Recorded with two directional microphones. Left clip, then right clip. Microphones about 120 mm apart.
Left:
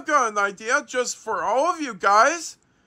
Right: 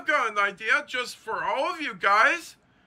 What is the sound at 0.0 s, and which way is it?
Speech, 25° left (ahead or behind).